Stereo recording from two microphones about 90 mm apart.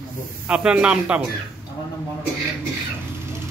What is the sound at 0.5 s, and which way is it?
Speech, 10° right (ahead or behind).